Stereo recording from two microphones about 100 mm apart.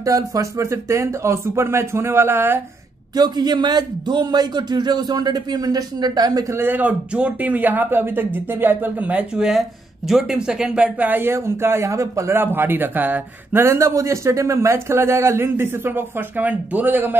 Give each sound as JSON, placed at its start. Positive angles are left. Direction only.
{"t": 0.0, "sound": "speech", "side_deg": -35}
{"t": 3.2, "sound": "a man's voice", "side_deg": -45}
{"t": 6.6, "sound": "speech", "side_deg": -20}